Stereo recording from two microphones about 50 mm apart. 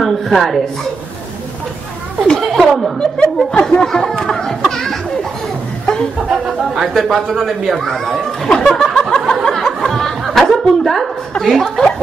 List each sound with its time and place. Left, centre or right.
0.0 s speech: centre
2.2 s a child's voice: centre
2.6 s speech: centre
3.0 s a child's voice: centre
6.2 s speech: centre
6.9 s a child's voice: centre
9.3 s music: centre
11.4 s speech: centre